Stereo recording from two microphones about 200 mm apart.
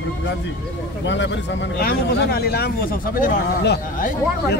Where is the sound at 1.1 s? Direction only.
65° left (ahead or behind); by 4.1 s 50° left (ahead or behind).